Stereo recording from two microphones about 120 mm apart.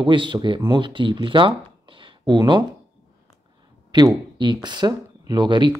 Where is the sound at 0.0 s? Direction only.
45° right (ahead or behind).